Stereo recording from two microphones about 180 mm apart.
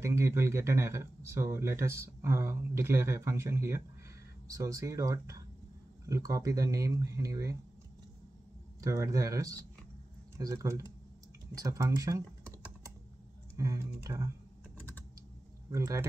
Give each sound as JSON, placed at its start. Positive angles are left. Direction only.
{"t": 0.0, "sound": "speech", "side_deg": -15}
{"t": 8.8, "sound": "speech", "side_deg": -15}
{"t": 13.6, "sound": "speech", "side_deg": -15}
{"t": 15.7, "sound": "speech", "side_deg": -15}